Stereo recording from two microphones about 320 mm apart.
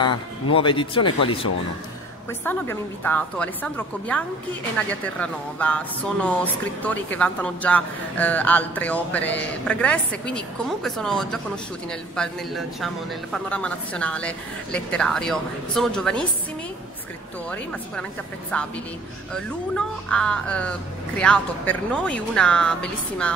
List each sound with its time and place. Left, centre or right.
0.5 s speech: centre
2.4 s a woman's voice: centre
18.5 s a woman's voice: centre